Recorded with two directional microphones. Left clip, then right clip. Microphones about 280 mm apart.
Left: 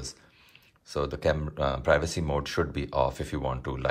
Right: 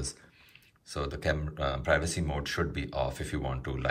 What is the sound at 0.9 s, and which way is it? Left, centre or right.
Speech, centre.